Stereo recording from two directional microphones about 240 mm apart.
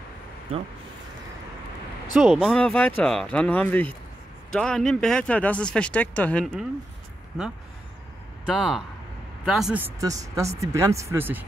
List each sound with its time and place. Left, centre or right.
0.5 s speech: right
2.1 s speech: centre